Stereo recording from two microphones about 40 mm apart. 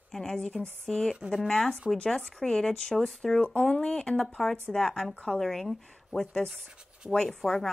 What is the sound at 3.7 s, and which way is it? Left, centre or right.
Speech, centre.